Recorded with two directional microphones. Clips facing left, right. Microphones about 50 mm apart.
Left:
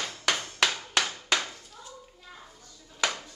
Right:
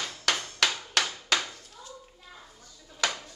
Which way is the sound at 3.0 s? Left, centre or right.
Centre.